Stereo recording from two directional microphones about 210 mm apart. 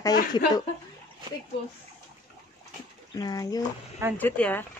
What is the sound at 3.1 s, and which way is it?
Speech, 20° left (ahead or behind).